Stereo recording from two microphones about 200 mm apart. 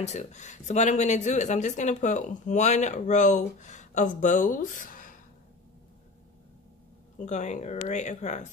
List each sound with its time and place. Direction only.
0.0 s speech: 35° left (ahead or behind)
7.2 s speech: 35° left (ahead or behind)